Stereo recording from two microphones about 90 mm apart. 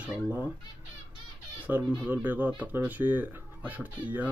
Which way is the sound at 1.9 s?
10° right (ahead or behind).